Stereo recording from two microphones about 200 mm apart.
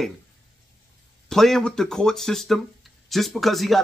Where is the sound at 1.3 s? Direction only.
Centre (ahead or behind).